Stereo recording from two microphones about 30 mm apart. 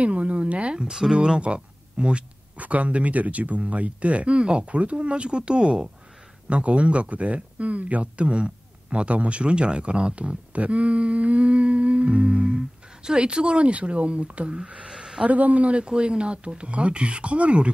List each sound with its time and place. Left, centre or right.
0.0 s speech: right
0.7 s speech: right
1.4 s speech: right
2.5 s speech: right
4.9 s speech: right
6.5 s speech: right
12.5 s a sound: right
13.2 s speech: right
14.9 s a sound: centre
15.2 s speech: right
15.7 s speech: right